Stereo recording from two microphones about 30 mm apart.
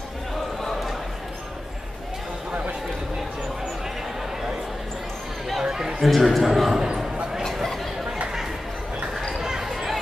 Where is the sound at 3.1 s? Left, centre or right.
Centre.